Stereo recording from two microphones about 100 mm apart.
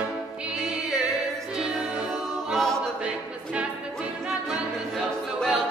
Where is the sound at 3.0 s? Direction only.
15° right (ahead or behind).